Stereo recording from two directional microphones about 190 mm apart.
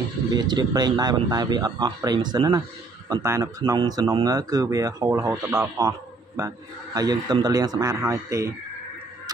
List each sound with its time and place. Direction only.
0.3 s speech: 20° right (ahead or behind)